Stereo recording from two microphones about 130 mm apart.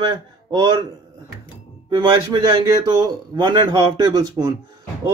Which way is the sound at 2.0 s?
40° right (ahead or behind).